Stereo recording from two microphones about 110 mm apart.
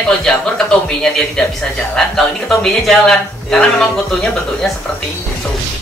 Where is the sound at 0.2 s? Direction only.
5° left (ahead or behind).